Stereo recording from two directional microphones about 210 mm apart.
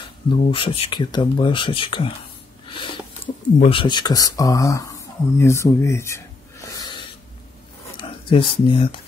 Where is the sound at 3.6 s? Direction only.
25° left (ahead or behind).